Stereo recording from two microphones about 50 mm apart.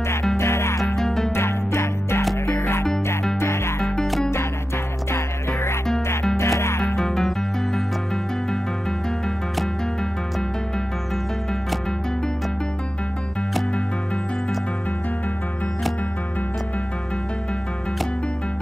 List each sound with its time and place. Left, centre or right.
0.4 s music: left
0.9 s music: centre
1.3 s music: left
3.8 s music: centre
5.1 s music: left
7.0 s music: centre